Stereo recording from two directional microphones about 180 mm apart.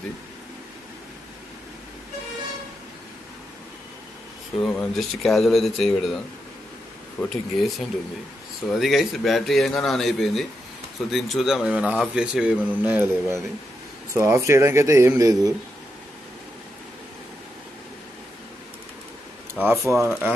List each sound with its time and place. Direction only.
4.6 s speech: 5° left (ahead or behind)
7.2 s speech: centre (ahead or behind); by 15.5 s 15° right (ahead or behind)
19.5 s speech: 15° right (ahead or behind)